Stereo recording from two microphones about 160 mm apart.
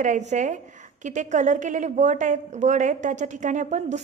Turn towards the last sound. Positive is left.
turn(degrees=-50)  # may be behind; listen again after turning